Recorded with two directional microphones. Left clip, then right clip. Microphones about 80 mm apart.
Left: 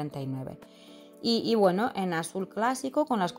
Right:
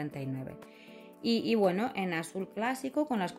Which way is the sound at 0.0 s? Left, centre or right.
Left.